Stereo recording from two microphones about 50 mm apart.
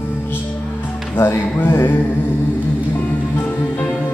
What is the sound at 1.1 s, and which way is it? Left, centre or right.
Mantra, left.